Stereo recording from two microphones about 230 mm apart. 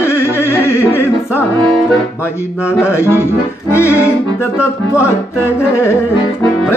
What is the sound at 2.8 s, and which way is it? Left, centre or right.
Music, centre.